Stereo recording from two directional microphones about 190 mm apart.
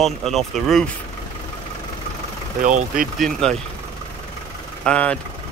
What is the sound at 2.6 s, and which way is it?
Speech, 40° right (ahead or behind).